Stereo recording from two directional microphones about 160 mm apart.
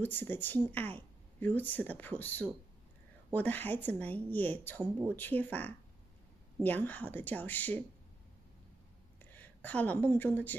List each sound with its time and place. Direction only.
0.0 s speech: 10° left (ahead or behind)
9.2 s a woman's voice: 10° left (ahead or behind)